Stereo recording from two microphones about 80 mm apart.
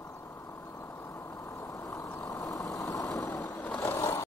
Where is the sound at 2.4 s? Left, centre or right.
Left.